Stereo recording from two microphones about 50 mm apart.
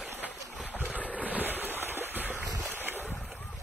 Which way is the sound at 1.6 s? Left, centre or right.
Right.